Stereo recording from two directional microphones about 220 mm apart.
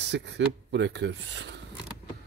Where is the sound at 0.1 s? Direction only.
50° right (ahead or behind).